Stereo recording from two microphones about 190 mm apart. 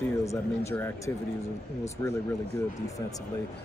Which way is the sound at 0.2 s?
15° left (ahead or behind).